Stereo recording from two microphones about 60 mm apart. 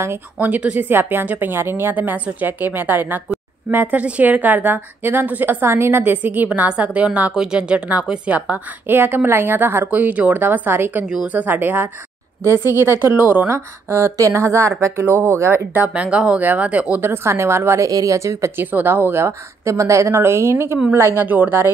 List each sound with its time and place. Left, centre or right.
0.4 s a woman's voice: right
0.8 s a woman's voice: right
6.2 s a woman's voice: right
8.9 s a woman's voice: right
13.0 s a woman's voice: right
13.5 s speech: right
15.0 s speech: right
15.7 s a woman's voice: right
17.0 s speech: right
17.8 s speech: right
18.6 s a woman's voice: right
19.6 s speech: right
20.2 s a woman's voice: right